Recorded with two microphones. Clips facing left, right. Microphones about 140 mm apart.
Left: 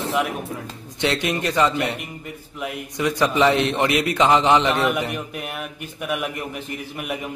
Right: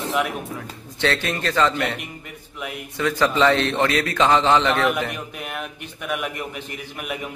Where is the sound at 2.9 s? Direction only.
20° left (ahead or behind).